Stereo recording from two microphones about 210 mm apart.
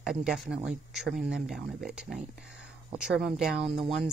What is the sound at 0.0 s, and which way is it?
Speech, centre (ahead or behind).